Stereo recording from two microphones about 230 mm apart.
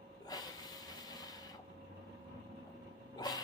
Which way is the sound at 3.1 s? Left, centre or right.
Centre.